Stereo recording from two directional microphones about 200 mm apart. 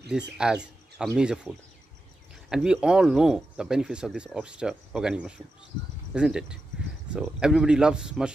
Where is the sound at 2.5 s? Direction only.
5° right (ahead or behind).